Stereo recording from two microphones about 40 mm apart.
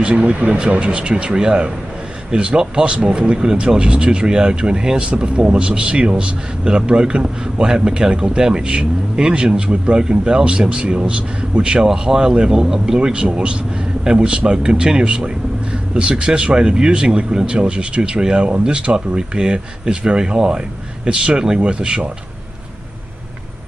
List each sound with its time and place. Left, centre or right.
0.0 s a man's voice: right